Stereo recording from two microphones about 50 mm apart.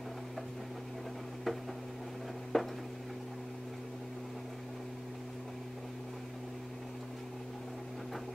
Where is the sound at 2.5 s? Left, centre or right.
Centre.